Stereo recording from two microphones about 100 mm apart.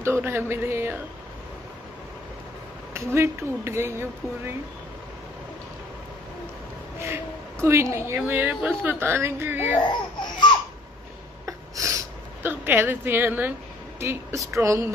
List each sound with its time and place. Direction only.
0.0 s speech: 25° right (ahead or behind)
2.9 s speech: 25° right (ahead or behind)
7.0 s a woman's voice: 30° right (ahead or behind)
11.4 s a sound: 35° right (ahead or behind)
12.4 s a woman's voice: 20° right (ahead or behind)